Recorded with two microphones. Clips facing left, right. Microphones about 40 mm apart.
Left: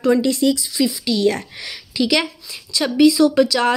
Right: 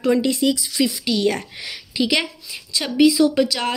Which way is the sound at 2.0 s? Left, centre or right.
Centre.